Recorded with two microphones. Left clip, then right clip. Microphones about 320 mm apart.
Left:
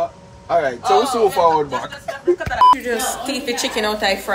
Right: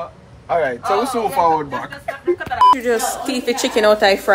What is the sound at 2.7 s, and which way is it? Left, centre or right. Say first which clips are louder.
Speech: right 3 dB; right.